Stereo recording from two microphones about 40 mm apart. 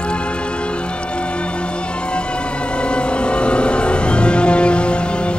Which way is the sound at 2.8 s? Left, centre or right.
Left.